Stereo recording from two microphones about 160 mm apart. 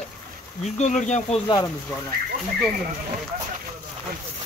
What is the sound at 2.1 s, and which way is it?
Speech, 70° right (ahead or behind).